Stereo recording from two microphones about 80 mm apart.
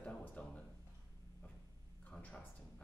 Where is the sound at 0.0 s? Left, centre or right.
Centre.